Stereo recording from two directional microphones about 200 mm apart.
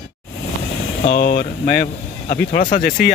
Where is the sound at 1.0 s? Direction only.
50° left (ahead or behind).